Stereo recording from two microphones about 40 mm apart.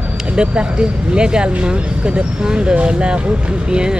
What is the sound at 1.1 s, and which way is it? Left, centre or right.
Speech, right.